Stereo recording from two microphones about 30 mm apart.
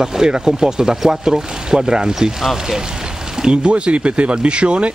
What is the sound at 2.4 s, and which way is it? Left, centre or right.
Speech, centre.